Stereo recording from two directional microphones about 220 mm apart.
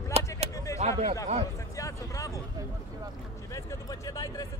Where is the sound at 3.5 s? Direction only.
15° left (ahead or behind).